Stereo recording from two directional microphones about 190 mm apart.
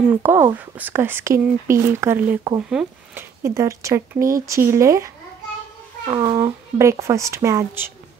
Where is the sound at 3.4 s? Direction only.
15° right (ahead or behind).